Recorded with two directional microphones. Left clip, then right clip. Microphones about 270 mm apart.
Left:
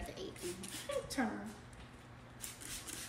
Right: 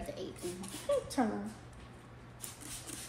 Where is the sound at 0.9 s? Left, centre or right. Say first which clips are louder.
Right 7 dB; centre.